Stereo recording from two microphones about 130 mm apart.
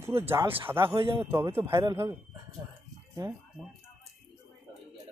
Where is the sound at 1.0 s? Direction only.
45° right (ahead or behind).